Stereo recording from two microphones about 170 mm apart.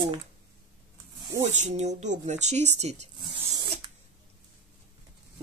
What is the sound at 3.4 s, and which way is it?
Filing, 35° right (ahead or behind).